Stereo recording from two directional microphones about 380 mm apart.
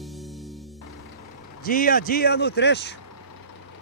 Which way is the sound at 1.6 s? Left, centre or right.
Left.